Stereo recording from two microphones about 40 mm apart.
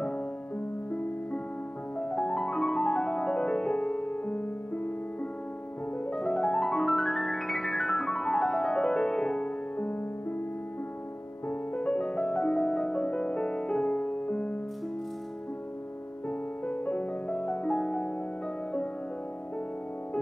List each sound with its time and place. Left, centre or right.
2.0 s music: left
6.0 s music: left
6.9 s piano: centre
9.8 s music: left
11.4 s music: left
16.3 s music: left